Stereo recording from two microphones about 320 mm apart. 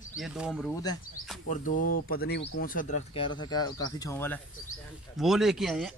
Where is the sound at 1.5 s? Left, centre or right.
Left; by 6.0 s centre.